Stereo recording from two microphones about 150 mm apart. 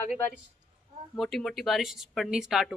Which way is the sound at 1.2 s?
Centre (ahead or behind).